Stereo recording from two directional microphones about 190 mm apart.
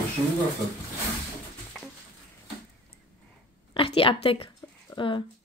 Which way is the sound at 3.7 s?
30° left (ahead or behind).